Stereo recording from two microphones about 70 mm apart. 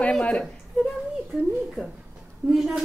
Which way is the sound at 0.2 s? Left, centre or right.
Centre.